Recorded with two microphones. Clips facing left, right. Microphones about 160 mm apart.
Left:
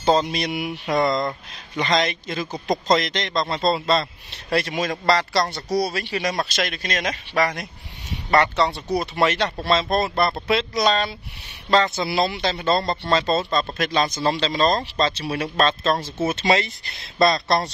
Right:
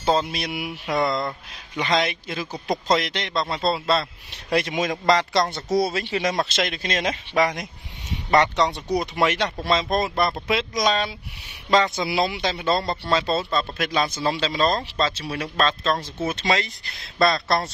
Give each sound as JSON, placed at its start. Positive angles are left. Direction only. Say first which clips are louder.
{"t": 0.0, "sound": "a man's voice", "louder": "left 3 dB", "side_deg": -5}
{"t": 17.2, "sound": "speech", "louder": "left 2 dB", "side_deg": 20}